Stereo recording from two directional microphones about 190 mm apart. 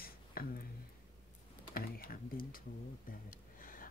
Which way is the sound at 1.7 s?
50° left (ahead or behind).